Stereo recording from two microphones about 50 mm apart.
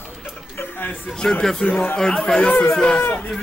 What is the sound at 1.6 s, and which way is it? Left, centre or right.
Speech, left.